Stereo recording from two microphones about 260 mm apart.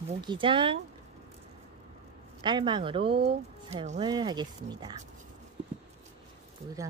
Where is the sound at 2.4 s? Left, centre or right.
Centre.